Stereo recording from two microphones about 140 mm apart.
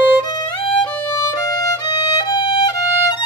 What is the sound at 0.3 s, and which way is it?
Violin, 30° left (ahead or behind).